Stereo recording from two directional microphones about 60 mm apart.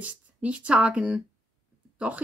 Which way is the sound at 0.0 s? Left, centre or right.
Right.